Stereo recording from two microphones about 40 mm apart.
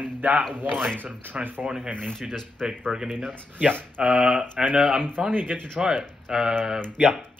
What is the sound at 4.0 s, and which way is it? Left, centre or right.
Speech, right.